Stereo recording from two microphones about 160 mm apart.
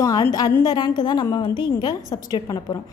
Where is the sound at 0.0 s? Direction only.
25° left (ahead or behind).